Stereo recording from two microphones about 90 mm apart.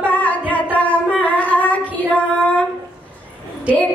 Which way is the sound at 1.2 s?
15° left (ahead or behind).